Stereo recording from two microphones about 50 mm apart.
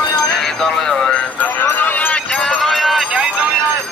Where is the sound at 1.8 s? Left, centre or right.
Left.